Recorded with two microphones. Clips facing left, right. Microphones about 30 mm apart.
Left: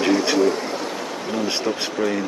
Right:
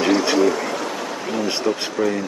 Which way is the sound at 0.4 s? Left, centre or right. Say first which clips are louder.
Right 1 dB; right.